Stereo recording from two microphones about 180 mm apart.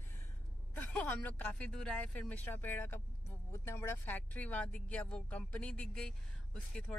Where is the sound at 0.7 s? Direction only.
10° left (ahead or behind).